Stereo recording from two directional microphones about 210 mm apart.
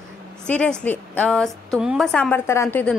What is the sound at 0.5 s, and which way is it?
A woman's voice, 5° left (ahead or behind).